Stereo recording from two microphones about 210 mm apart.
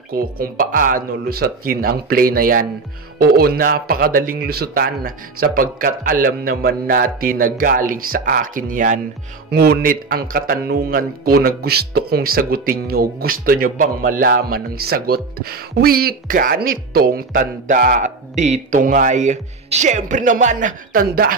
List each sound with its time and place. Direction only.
0.2 s speech: 40° right (ahead or behind)